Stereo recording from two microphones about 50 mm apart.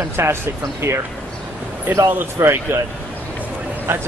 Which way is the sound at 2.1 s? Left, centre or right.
Right.